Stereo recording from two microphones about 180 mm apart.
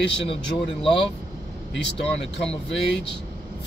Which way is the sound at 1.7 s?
75° left (ahead or behind).